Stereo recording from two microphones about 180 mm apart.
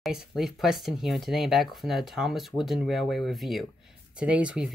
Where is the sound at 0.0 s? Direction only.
Centre (ahead or behind).